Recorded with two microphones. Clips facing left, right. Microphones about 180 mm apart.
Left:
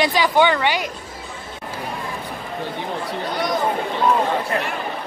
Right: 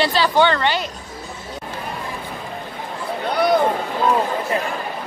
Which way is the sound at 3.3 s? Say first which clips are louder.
Right 7 dB; 65° right (ahead or behind).